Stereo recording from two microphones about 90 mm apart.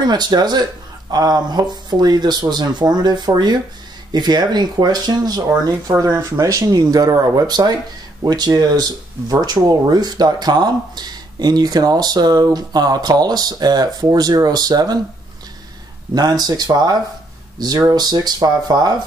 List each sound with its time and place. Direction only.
0.0 s speech: 50° right (ahead or behind)
16.2 s speech: 50° right (ahead or behind)